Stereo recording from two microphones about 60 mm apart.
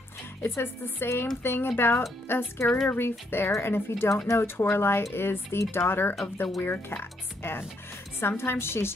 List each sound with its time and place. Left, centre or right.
0.4 s speech: left
6.2 s speech: left